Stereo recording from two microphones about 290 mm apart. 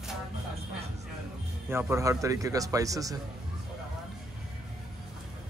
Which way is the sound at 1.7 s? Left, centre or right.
Centre.